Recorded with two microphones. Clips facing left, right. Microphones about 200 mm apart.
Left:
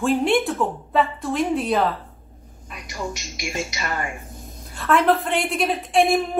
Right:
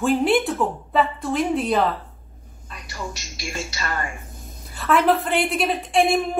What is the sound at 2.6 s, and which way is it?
Speech, 15° left (ahead or behind).